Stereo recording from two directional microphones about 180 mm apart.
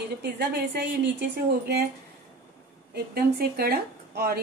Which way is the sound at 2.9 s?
60° right (ahead or behind).